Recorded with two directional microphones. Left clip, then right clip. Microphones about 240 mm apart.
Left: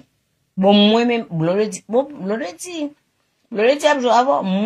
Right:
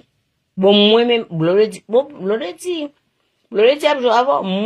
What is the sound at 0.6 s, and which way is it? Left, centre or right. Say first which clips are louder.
Speech: right 3 dB; right.